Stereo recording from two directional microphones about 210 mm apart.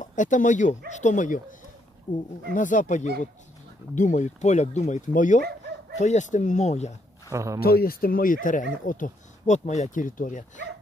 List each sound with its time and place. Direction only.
0.0 s speech: 35° left (ahead or behind)
2.1 s speech: 20° left (ahead or behind)
2.5 s speech: 40° left (ahead or behind)
7.2 s speech: 15° right (ahead or behind)
7.6 s speech: 45° left (ahead or behind)